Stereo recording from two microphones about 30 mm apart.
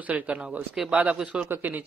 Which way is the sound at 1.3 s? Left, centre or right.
Right.